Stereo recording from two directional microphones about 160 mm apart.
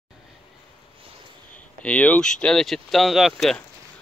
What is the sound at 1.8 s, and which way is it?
Speech, 10° left (ahead or behind).